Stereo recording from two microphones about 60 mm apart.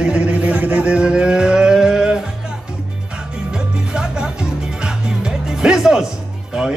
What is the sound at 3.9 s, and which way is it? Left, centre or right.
Music, centre.